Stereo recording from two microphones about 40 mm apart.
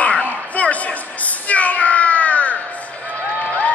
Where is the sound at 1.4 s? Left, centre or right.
Left.